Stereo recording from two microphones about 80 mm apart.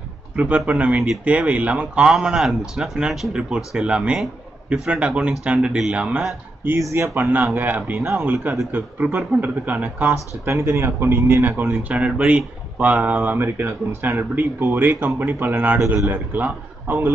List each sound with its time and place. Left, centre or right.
0.4 s a man's voice: centre
8.0 s speech: right
8.7 s speech: right
10.4 s a man's voice: right